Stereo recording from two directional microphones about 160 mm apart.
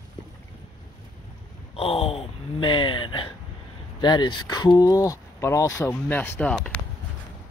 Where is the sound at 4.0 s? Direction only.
30° left (ahead or behind); by 6.8 s 5° left (ahead or behind).